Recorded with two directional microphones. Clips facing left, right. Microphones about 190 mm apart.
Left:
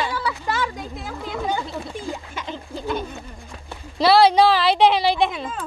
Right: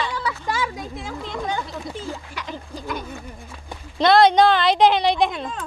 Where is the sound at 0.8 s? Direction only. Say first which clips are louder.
Even; centre (ahead or behind); by 3.0 s 25° left (ahead or behind).